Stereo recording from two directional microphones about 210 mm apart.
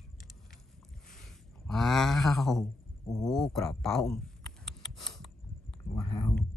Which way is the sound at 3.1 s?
Centre (ahead or behind).